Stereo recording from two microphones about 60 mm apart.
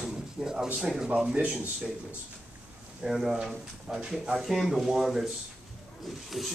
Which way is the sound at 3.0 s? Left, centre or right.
Centre.